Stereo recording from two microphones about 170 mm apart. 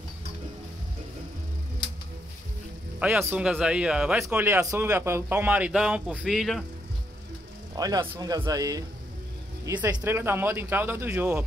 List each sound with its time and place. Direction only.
3.0 s a man's voice: 10° right (ahead or behind)
7.7 s a man's voice: 25° right (ahead or behind)